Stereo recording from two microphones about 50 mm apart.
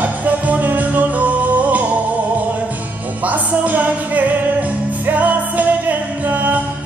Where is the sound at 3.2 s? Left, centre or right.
Right.